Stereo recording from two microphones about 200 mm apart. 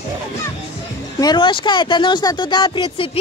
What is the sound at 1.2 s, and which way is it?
Speech, 25° left (ahead or behind).